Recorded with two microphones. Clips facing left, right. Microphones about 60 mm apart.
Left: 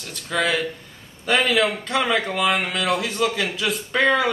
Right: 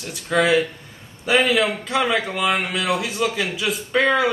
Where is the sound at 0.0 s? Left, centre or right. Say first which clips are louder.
Right 4 dB; centre.